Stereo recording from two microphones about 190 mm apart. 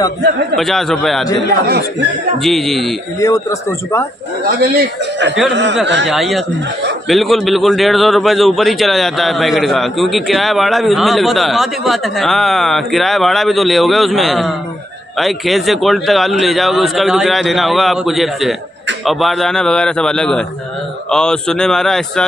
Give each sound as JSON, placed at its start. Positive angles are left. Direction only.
{"t": 0.6, "sound": "a man's voice", "side_deg": 0}
{"t": 1.5, "sound": "speech", "side_deg": -50}
{"t": 2.4, "sound": "a man's voice", "side_deg": 0}
{"t": 3.2, "sound": "speech", "side_deg": 15}
{"t": 4.5, "sound": "speech", "side_deg": -55}
{"t": 5.5, "sound": "speech", "side_deg": -65}
{"t": 6.0, "sound": "a man's voice", "side_deg": 0}